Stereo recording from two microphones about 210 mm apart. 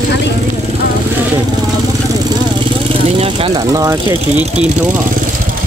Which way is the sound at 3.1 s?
25° right (ahead or behind).